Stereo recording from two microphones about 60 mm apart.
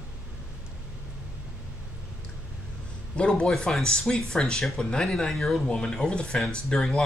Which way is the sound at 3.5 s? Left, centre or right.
Centre.